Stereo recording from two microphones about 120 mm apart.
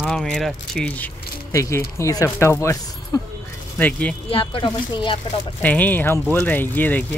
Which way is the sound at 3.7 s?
10° left (ahead or behind).